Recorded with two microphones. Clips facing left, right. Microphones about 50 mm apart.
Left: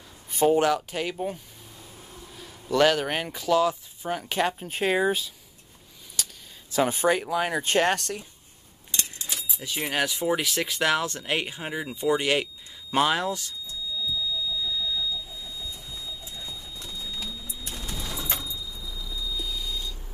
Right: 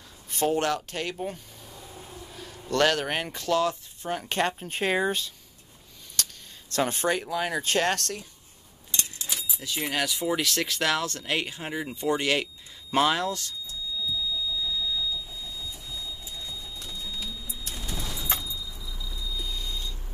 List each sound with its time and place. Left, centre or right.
0.3 s speech: centre
6.2 s a sound: centre
6.7 s speech: centre
9.6 s speech: centre
14.6 s vehicle: centre
17.8 s vehicle: centre
18.2 s keys jangling: centre
19.3 s a sound: centre